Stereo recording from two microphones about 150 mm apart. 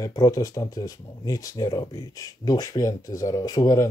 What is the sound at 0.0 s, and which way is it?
Speech, 25° left (ahead or behind).